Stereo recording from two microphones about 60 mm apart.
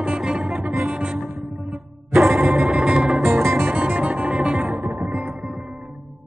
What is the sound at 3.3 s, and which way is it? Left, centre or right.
Music, right.